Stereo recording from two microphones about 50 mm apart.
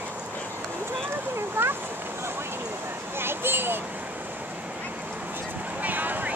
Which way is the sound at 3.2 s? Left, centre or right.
Right.